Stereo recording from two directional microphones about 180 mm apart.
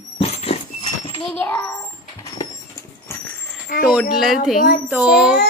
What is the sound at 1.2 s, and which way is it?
Speech, 10° left (ahead or behind).